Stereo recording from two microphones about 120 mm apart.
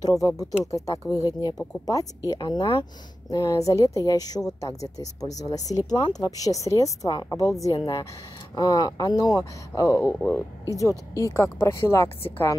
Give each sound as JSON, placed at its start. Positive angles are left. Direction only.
{"t": 0.0, "sound": "speech", "side_deg": 30}